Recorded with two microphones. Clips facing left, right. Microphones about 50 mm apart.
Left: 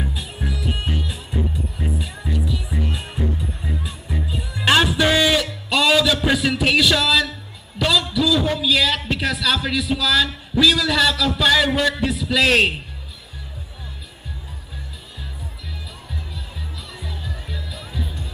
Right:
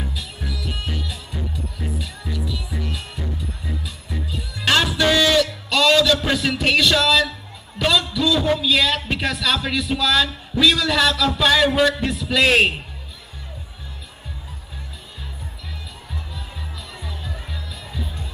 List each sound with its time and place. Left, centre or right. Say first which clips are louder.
0.1 s music: left 2 dB; left
3.2 s music: left 5 dB; left; by 6.1 s centre
6.2 s a man's voice: left 1 dB; centre
17.0 s music: left 1 dB; centre